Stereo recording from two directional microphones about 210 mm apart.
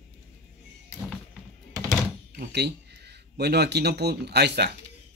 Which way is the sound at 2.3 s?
50° right (ahead or behind).